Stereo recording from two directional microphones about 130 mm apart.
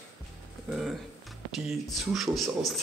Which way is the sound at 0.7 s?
Centre (ahead or behind).